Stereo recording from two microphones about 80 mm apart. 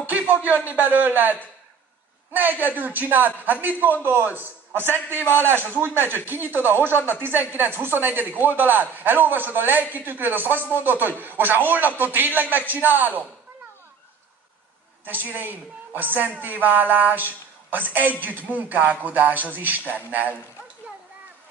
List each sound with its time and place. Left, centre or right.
0.0 s a woman's voice: right
2.3 s a woman's voice: right
5.2 s a man's voice: left
5.8 s a woman's voice: right
15.0 s a woman's voice: right